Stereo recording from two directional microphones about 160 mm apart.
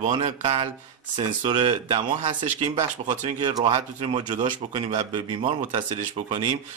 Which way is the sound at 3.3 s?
30° right (ahead or behind).